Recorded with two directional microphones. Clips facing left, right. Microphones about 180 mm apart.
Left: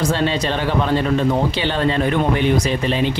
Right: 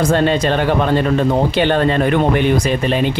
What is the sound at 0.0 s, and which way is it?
Speech, 50° right (ahead or behind).